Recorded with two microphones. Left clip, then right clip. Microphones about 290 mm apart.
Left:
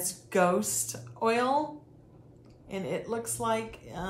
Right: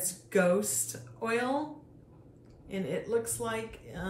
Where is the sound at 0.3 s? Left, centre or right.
Centre.